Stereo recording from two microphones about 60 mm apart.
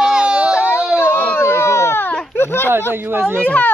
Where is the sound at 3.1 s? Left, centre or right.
Right.